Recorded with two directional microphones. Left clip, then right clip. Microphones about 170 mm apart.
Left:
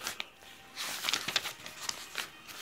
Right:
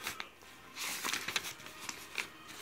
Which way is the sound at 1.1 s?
20° left (ahead or behind).